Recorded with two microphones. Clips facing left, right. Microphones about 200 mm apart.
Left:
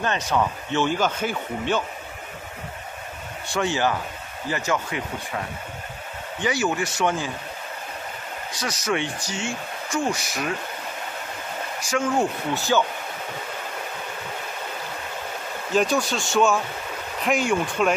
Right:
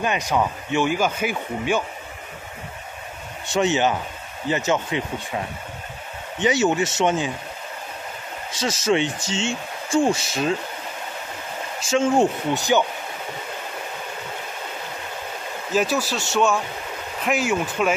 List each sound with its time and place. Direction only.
0.0 s speech: 10° right (ahead or behind)
3.4 s speech: 20° right (ahead or behind)
6.4 s speech: 20° right (ahead or behind)
8.5 s speech: 25° right (ahead or behind)
11.8 s speech: 25° right (ahead or behind)
15.7 s speech: 5° right (ahead or behind)